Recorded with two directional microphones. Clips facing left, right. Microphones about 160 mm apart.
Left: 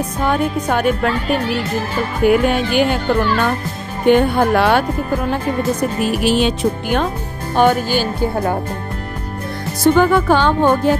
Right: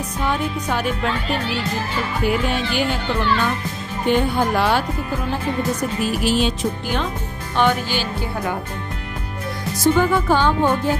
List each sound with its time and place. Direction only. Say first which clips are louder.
0.2 s speech: left 5 dB; 50° left (ahead or behind)
2.2 s speech: left 8 dB; 55° left (ahead or behind)
4.1 s music: left 6 dB; 55° left (ahead or behind)
6.0 s music: left 4 dB; 65° left (ahead or behind)
7.5 s speech: left 5 dB; 45° left (ahead or behind)
9.9 s music: left 5 dB; 65° left (ahead or behind)